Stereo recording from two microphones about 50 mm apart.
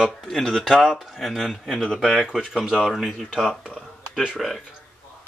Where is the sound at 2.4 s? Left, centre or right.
Centre.